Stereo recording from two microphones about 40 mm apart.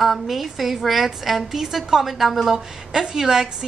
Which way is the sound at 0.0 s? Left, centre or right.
Centre.